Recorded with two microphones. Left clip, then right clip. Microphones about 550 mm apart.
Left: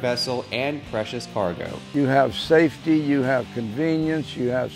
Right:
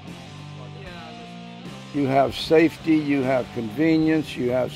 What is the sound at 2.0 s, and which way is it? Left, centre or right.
Speech, left.